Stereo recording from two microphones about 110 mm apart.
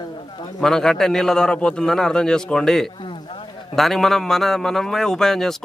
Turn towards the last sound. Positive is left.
turn(degrees=5)  # may be behind; listen again after turning